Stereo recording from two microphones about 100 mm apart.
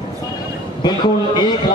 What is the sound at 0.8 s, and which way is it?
Speech, 45° left (ahead or behind).